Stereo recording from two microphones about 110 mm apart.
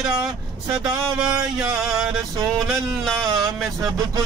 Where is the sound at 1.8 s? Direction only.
5° right (ahead or behind).